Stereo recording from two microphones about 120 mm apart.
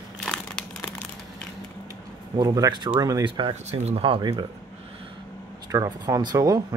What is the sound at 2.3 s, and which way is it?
Speech, 30° right (ahead or behind).